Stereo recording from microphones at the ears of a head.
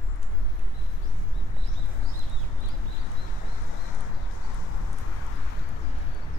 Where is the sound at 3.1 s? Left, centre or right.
Left.